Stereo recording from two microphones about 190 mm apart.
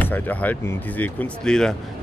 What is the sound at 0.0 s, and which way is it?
Speech, 10° left (ahead or behind).